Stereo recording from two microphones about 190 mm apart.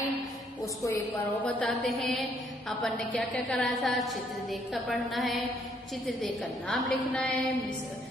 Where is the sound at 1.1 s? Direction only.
15° left (ahead or behind).